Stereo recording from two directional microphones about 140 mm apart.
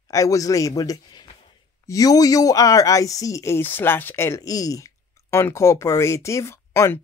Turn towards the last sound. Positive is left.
turn(degrees=20)  # may be behind; listen again after turning